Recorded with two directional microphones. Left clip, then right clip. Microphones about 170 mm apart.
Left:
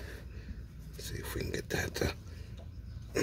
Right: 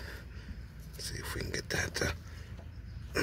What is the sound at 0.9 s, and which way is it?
Speech, 30° left (ahead or behind).